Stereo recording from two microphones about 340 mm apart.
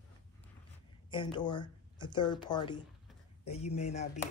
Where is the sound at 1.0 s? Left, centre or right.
Centre.